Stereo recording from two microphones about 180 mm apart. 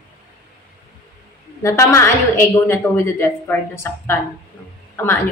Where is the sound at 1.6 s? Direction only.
15° left (ahead or behind).